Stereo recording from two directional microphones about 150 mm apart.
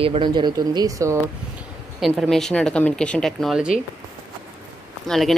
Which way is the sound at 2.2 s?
5° left (ahead or behind).